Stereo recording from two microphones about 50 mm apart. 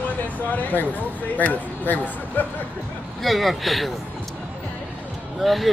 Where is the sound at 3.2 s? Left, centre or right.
Centre.